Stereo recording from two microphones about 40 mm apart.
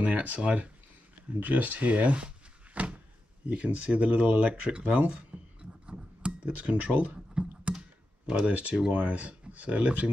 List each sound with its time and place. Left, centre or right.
0.0 s speech: right
2.1 s a sound: right
3.4 s speech: right
7.3 s computer keyboard: right
8.5 s speech: right